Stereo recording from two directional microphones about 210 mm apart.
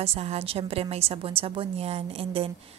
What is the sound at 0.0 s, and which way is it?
A woman's voice, 30° right (ahead or behind).